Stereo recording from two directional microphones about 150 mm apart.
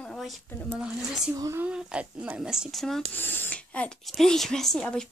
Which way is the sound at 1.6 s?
5° right (ahead or behind).